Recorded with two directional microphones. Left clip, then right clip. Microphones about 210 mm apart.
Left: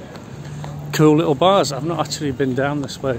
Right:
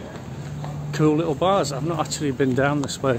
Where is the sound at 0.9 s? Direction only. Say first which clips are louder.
Left 6 dB; 45° left (ahead or behind).